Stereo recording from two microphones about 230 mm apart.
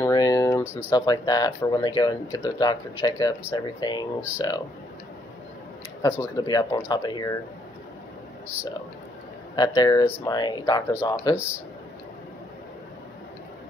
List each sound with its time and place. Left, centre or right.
0.0 s a sound: centre
0.8 s speech: centre
6.0 s speech: centre
9.6 s speech: centre